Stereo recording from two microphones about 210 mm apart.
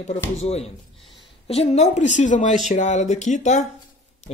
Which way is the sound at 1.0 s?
Centre (ahead or behind).